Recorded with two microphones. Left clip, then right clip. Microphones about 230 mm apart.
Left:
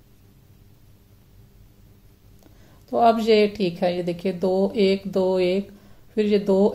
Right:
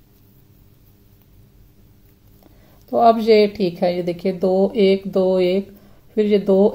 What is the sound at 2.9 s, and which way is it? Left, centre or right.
A woman's voice, centre.